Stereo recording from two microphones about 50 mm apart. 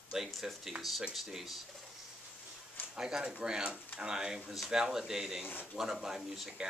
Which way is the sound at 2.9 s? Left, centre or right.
Centre.